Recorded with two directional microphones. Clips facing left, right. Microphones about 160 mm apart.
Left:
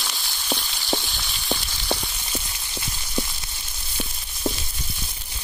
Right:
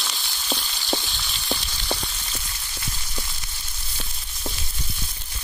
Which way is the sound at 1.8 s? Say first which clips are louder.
Left 2 dB; 15° left (ahead or behind).